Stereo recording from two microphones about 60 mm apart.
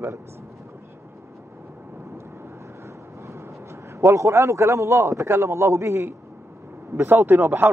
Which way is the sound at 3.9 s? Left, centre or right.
Right.